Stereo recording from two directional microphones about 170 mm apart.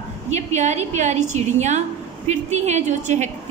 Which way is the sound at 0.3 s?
40° right (ahead or behind).